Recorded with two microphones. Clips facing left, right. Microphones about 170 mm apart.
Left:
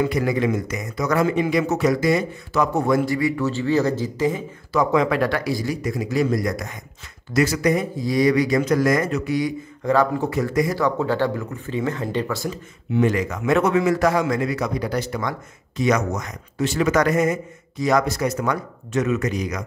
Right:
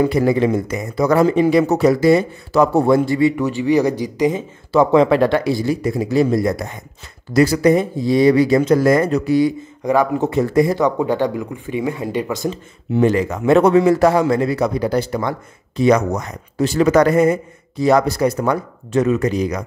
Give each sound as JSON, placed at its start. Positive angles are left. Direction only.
{"t": 0.0, "sound": "speech", "side_deg": -30}
{"t": 9.8, "sound": "speech", "side_deg": -15}
{"t": 12.9, "sound": "speech", "side_deg": -30}